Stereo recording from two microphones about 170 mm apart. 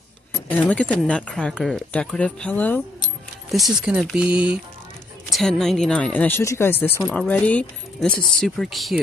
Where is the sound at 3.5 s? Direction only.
5° right (ahead or behind).